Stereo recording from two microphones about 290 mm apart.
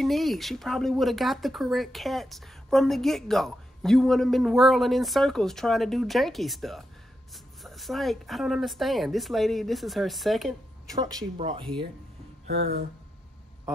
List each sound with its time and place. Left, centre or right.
0.0 s speech: centre
10.9 s speech: centre